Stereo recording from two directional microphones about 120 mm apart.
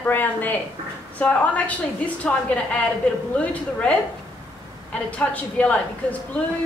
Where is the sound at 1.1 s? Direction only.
10° left (ahead or behind).